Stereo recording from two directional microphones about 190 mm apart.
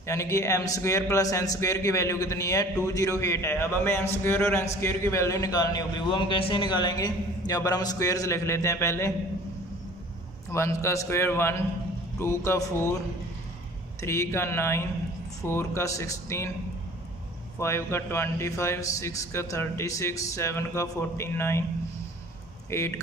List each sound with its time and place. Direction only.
0.0 s a man's voice: 15° left (ahead or behind)
10.5 s a man's voice: 15° left (ahead or behind)
14.0 s a man's voice: 15° left (ahead or behind)
17.6 s a man's voice: 15° left (ahead or behind)
22.7 s a man's voice: 15° left (ahead or behind)